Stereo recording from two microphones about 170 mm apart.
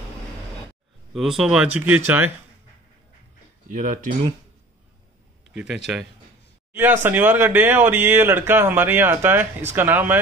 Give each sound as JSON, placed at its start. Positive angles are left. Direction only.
{"t": 1.1, "sound": "speech", "side_deg": 0}
{"t": 3.7, "sound": "speech", "side_deg": -50}
{"t": 5.5, "sound": "a man's voice", "side_deg": -5}